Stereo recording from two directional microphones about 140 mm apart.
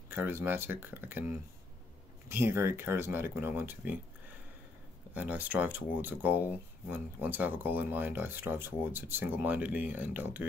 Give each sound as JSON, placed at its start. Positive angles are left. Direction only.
{"t": 0.1, "sound": "speech", "side_deg": -15}
{"t": 5.1, "sound": "speech", "side_deg": -10}